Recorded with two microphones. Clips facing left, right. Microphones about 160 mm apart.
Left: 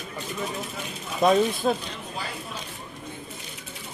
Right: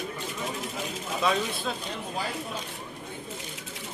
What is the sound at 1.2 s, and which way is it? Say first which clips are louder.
Speech: left 8 dB; 45° left (ahead or behind).